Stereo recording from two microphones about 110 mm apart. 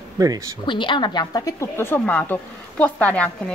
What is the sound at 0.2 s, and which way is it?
Speech, 35° right (ahead or behind).